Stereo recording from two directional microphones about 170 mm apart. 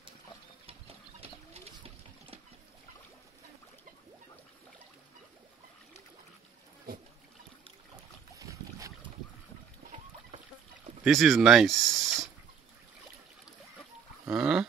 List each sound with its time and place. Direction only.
0.7 s a sound: 35° right (ahead or behind)
8.4 s boat: 20° right (ahead or behind)
11.1 s speech: centre (ahead or behind)
14.2 s livestock: 5° right (ahead or behind)